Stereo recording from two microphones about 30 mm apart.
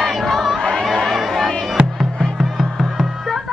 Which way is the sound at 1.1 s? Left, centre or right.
Centre.